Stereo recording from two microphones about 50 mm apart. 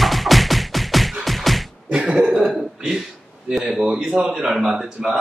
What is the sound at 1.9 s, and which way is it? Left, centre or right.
Throat clearing, centre.